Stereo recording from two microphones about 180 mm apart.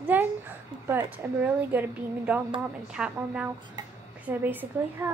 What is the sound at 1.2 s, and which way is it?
A woman's voice, 10° right (ahead or behind).